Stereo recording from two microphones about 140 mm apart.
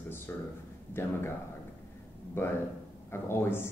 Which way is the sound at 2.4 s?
15° left (ahead or behind).